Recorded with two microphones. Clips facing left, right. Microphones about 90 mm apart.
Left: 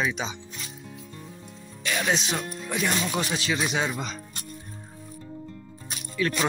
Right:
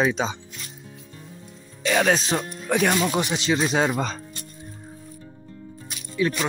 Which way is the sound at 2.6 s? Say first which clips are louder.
Right 7 dB; 60° right (ahead or behind).